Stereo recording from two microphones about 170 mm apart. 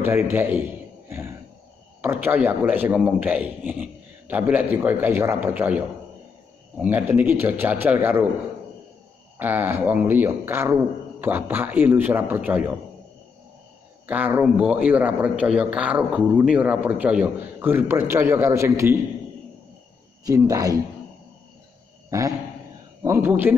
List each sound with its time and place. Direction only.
0.0 s a man's voice: 10° right (ahead or behind)
1.0 s a sound: 15° right (ahead or behind)
2.2 s a man's voice: 10° right (ahead or behind)
9.4 s a man's voice: 10° right (ahead or behind)
14.0 s a man's voice: 10° right (ahead or behind)
20.2 s speech: 20° right (ahead or behind)
22.1 s a man's voice: 20° right (ahead or behind)